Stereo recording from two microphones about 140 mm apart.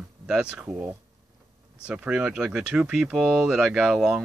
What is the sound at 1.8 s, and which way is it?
Speech, 10° right (ahead or behind).